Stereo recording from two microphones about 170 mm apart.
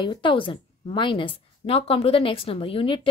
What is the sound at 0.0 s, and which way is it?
A woman's voice, 30° left (ahead or behind).